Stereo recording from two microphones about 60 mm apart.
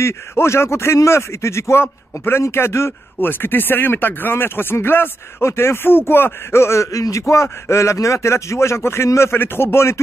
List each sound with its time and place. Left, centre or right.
0.0 s speech: left